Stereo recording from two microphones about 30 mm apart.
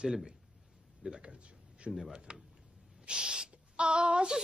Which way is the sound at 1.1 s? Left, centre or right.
Right.